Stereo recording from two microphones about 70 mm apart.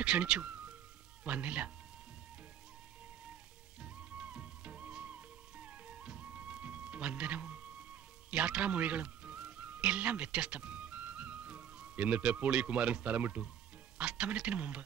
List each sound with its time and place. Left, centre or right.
0.0 s speech: centre
3.8 s music: centre
13.9 s speech: centre